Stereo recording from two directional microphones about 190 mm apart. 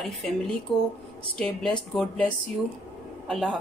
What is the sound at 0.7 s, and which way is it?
Speech, 25° left (ahead or behind).